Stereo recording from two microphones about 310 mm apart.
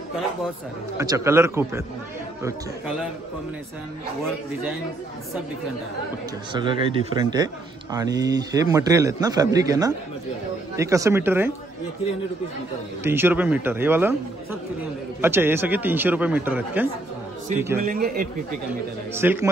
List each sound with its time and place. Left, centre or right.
0.9 s a man's voice: centre
6.5 s a man's voice: centre
13.0 s a man's voice: centre
17.8 s speech: right
18.7 s a man's voice: centre